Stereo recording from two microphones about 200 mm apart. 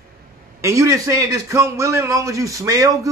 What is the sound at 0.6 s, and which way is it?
A man's voice, 15° right (ahead or behind).